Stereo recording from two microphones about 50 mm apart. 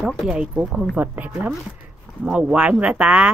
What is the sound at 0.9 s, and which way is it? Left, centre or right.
Speech, right.